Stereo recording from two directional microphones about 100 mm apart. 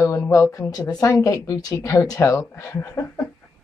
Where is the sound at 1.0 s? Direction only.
30° left (ahead or behind).